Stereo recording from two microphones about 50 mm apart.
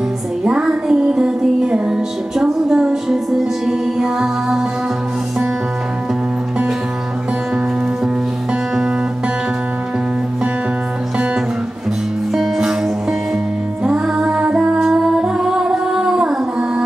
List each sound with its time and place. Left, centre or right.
0.4 s music: right
12.3 s music: centre
13.8 s music: centre